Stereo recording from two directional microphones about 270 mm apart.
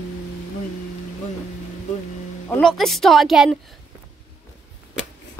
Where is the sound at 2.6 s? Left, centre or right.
Centre.